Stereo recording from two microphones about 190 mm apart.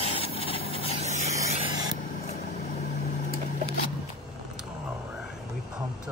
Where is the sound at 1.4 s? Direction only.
30° right (ahead or behind).